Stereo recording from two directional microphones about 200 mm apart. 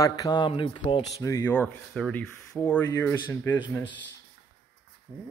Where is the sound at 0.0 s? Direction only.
20° left (ahead or behind).